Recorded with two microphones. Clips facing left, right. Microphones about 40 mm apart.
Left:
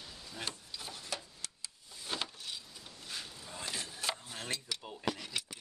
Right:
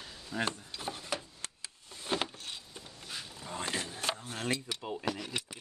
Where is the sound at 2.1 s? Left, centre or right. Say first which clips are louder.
Right 5 dB; right.